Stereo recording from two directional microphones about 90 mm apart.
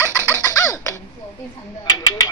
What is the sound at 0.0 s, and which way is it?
Music, 30° right (ahead or behind).